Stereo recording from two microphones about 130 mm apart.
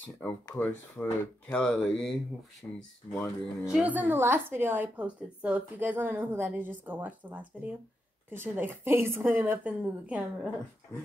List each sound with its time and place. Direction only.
0.2 s speech: 15° left (ahead or behind)
2.6 s speech: 20° left (ahead or behind)
3.2 s a woman's voice: 5° right (ahead or behind)